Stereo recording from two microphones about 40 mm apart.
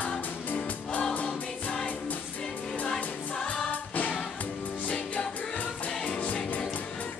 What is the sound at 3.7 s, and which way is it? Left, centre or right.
Music, left.